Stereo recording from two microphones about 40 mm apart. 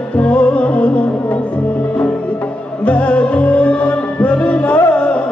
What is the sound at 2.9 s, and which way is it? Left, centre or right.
Music, left.